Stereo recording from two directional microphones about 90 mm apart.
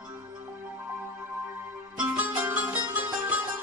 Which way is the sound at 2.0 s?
20° right (ahead or behind).